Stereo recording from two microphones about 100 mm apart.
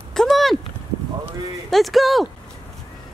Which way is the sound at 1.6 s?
Centre (ahead or behind).